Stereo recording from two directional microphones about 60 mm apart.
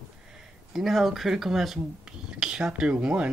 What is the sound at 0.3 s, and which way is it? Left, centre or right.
Speech, centre.